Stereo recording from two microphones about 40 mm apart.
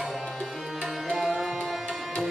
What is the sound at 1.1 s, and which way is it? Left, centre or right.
Music, centre.